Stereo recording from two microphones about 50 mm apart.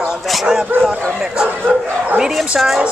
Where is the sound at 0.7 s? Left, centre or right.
Right.